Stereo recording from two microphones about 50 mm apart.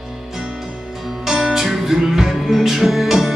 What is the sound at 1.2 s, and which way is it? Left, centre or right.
Music, centre.